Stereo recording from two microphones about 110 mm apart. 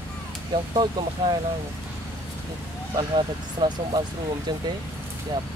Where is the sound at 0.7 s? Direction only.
45° right (ahead or behind).